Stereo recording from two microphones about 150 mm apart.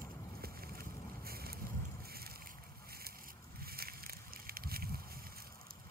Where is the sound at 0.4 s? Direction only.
90° right.